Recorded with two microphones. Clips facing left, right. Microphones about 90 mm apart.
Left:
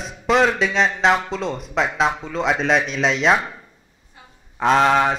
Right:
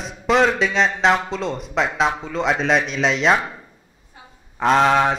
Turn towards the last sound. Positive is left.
turn(degrees=0)  # may be behind; listen again after turning